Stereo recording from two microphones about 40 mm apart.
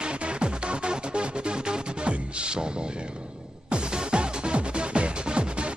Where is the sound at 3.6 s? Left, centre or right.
Right.